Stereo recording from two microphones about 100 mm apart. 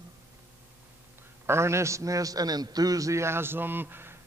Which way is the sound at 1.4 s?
25° right (ahead or behind).